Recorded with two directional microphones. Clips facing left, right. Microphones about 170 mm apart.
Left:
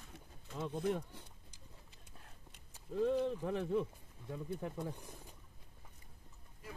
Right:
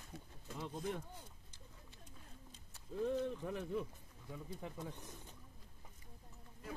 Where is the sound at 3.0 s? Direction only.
75° left (ahead or behind).